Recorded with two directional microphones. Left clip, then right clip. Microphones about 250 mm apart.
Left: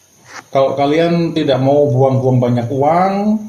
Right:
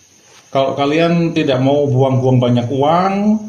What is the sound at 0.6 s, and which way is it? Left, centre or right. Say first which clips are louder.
Speech: left 1 dB; right.